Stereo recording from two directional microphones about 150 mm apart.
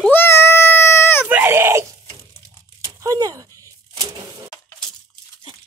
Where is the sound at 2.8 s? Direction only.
25° right (ahead or behind).